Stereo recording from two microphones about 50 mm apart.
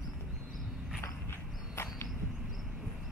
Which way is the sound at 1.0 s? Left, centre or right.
Left.